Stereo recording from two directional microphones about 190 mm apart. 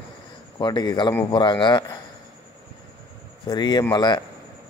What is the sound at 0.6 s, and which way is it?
Speech, 25° left (ahead or behind).